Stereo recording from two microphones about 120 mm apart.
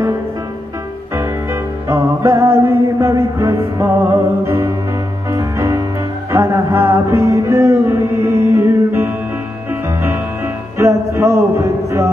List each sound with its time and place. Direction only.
1.1 s music: 20° right (ahead or behind)
10.8 s music: 25° right (ahead or behind)